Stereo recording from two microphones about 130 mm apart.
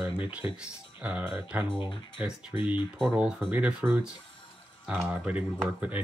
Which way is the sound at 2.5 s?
40° left (ahead or behind).